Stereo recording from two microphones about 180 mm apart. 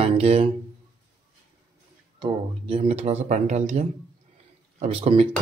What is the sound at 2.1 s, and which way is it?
Speech, 30° right (ahead or behind).